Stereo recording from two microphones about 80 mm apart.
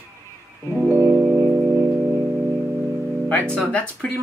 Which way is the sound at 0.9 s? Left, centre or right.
Right.